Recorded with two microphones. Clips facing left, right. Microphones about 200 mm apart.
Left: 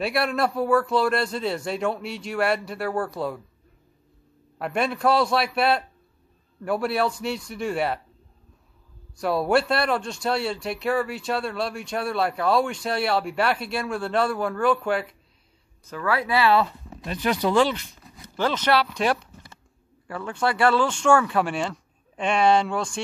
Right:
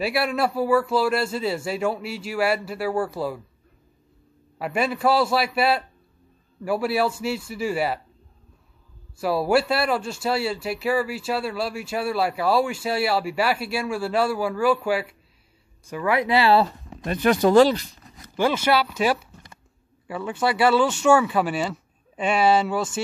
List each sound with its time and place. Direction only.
0.0 s speech: 5° right (ahead or behind)
4.6 s speech: 5° right (ahead or behind)
9.2 s speech: 5° right (ahead or behind); by 16.7 s 30° right (ahead or behind)
17.0 s speech: 55° right (ahead or behind); by 17.9 s 35° right (ahead or behind)
18.3 s speech: 10° right (ahead or behind)